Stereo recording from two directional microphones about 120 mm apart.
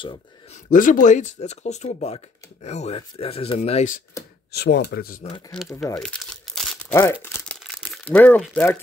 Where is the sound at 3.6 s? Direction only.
75° left (ahead or behind).